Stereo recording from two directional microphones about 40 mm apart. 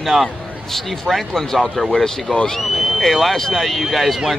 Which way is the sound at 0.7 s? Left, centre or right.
Centre.